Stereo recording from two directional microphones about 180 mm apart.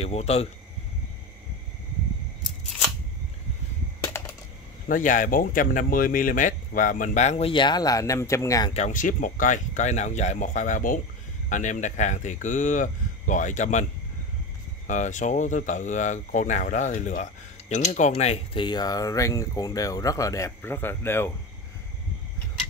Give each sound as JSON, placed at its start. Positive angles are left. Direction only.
{"t": 0.0, "sound": "speech", "side_deg": 35}
{"t": 4.8, "sound": "speech", "side_deg": 45}
{"t": 8.7, "sound": "speech", "side_deg": 45}
{"t": 14.9, "sound": "speech", "side_deg": 45}